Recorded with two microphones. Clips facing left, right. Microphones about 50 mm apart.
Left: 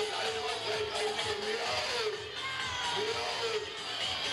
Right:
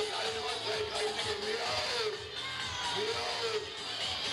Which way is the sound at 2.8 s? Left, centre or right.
Centre.